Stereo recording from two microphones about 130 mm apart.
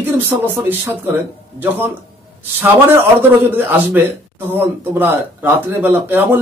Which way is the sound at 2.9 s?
15° right (ahead or behind).